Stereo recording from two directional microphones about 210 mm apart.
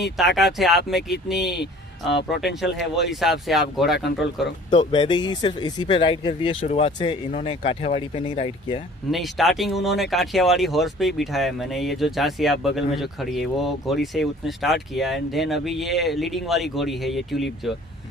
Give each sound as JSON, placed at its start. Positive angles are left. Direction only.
{"t": 0.0, "sound": "speech", "side_deg": 0}
{"t": 2.1, "sound": "speech", "side_deg": 55}
{"t": 3.0, "sound": "speech", "side_deg": 0}
{"t": 4.6, "sound": "speech", "side_deg": 20}
{"t": 9.1, "sound": "speech", "side_deg": 0}